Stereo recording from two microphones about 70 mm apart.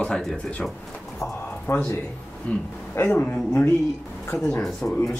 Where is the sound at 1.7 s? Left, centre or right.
Left.